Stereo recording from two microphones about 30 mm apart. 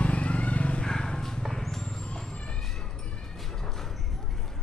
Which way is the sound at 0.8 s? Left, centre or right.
Left.